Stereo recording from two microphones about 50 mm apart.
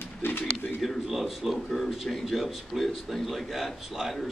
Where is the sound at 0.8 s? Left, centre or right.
Centre.